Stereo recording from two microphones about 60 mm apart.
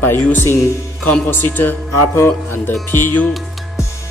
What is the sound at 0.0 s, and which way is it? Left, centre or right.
A man's voice, left.